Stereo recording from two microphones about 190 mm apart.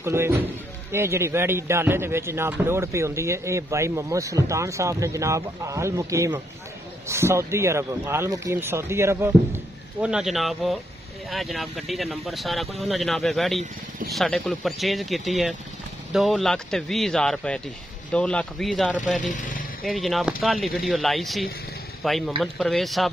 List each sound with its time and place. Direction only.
0.0 s a man's voice: 15° right (ahead or behind)
10.0 s speech: centre (ahead or behind)
19.2 s speech: 40° left (ahead or behind)
19.8 s a man's voice: centre (ahead or behind)